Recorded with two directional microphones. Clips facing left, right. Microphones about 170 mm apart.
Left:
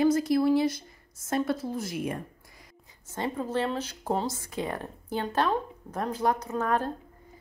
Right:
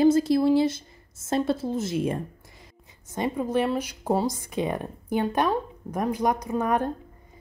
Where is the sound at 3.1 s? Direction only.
15° right (ahead or behind).